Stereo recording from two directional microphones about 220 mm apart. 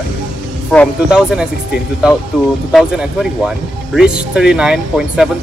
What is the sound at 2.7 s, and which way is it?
Speech, centre (ahead or behind).